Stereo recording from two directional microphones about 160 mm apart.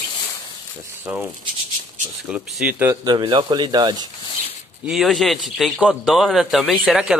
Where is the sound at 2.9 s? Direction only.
25° right (ahead or behind).